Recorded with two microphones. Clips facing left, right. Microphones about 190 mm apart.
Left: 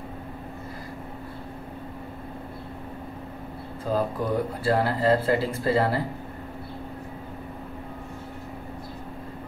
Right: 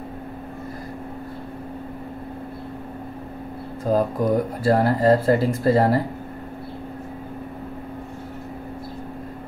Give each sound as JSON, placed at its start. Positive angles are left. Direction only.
{"t": 3.8, "sound": "speech", "side_deg": -45}